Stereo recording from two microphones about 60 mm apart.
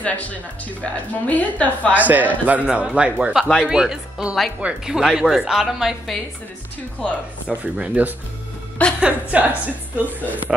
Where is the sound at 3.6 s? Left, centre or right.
Centre.